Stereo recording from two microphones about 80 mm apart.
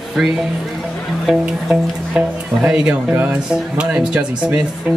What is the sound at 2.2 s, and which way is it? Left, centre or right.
Speech, centre.